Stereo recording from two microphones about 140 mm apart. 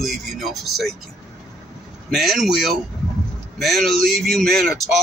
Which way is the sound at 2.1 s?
Centre (ahead or behind).